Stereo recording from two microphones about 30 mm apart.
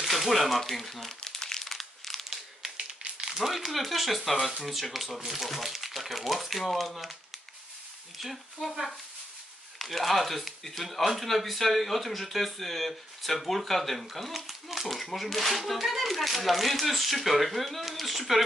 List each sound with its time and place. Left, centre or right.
0.0 s speech: centre
1.2 s crumpling: centre
1.6 s crumpling: centre
3.2 s speech: centre
6.6 s speech: centre
8.2 s speech: centre
9.8 s speech: centre
14.3 s speech: centre